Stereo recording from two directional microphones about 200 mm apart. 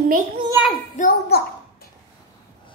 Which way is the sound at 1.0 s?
50° left (ahead or behind).